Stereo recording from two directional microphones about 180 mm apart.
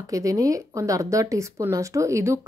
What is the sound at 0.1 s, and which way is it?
Speech, 20° right (ahead or behind).